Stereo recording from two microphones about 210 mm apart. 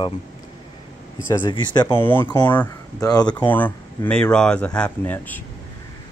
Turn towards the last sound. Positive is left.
turn(degrees=10)  # may be behind; listen again after turning